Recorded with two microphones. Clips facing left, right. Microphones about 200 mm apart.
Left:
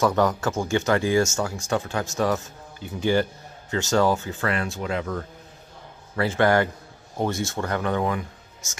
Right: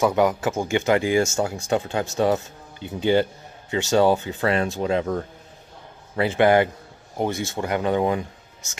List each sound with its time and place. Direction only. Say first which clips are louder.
0.0 s speech: right 2 dB; 10° right (ahead or behind)
1.2 s speech: right 2 dB; 30° right (ahead or behind)
1.7 s speech: right 3 dB; 20° right (ahead or behind)